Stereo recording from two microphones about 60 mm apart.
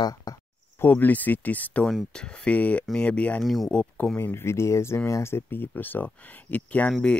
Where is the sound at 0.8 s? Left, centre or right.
Left.